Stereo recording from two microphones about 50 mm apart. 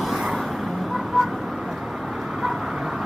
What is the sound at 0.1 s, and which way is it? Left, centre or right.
Vehicle, centre.